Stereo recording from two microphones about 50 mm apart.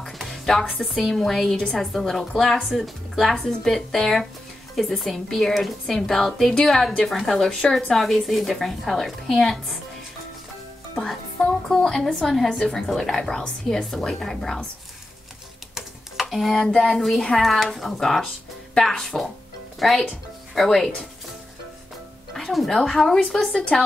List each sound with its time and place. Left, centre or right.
0.2 s music: centre
1.0 s a woman's voice: centre
7.0 s a woman's voice: centre
11.7 s a woman's voice: centre
15.7 s a sound: centre
16.6 s a woman's voice: centre
22.3 s music: centre
22.7 s a woman's voice: centre